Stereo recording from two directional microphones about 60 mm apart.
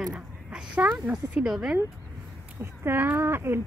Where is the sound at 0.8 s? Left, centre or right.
Right.